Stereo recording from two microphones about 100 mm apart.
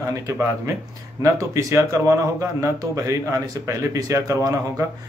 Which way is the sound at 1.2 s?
35° right (ahead or behind).